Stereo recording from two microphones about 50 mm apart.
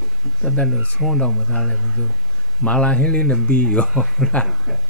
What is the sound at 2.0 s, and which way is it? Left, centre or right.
Speech, left.